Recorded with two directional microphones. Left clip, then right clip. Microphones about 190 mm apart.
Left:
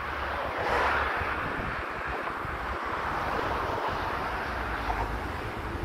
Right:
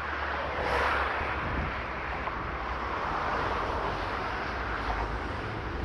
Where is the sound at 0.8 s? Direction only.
70° left (ahead or behind).